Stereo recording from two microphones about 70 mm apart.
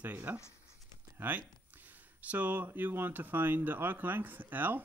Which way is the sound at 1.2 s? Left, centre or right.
Right.